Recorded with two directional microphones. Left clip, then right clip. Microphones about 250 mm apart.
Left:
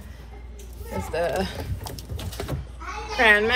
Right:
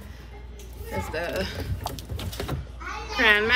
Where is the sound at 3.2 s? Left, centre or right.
Centre.